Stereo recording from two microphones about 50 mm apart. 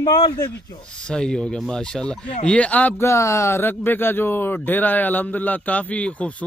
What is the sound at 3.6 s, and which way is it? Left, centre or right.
A man's voice, left.